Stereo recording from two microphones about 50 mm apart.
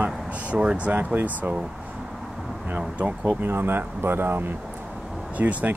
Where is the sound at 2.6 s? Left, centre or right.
Right.